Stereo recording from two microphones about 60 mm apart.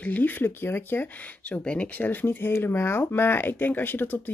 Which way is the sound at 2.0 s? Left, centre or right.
Left.